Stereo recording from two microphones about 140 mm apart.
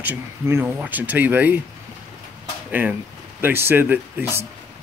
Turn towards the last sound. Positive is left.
turn(degrees=-15)  # may be behind; listen again after turning